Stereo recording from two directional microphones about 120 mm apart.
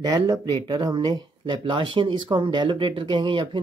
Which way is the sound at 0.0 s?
35° right (ahead or behind).